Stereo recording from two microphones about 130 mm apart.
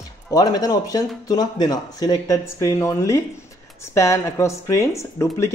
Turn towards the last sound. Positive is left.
turn(degrees=20)  # may be behind; listen again after turning